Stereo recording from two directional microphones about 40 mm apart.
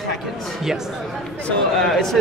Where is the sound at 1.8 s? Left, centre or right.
Centre.